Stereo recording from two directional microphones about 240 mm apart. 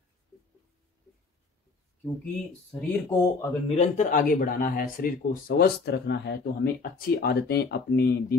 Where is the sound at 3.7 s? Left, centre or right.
Left.